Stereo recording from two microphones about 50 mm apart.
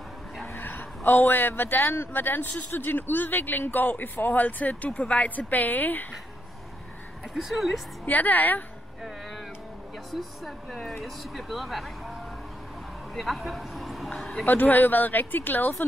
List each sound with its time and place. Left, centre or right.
0.6 s speech: left
7.3 s speech: centre
8.0 s speech: left
10.7 s speech: centre
14.4 s speech: left